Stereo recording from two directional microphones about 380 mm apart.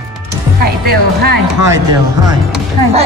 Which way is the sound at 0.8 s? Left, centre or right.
Right.